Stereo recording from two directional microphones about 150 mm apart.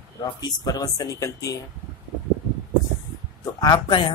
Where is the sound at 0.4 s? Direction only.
25° left (ahead or behind).